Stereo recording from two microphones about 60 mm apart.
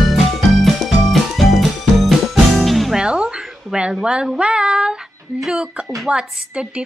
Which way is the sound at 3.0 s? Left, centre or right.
Centre.